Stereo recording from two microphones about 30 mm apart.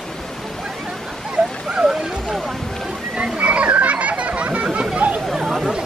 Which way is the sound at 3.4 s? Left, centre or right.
Right.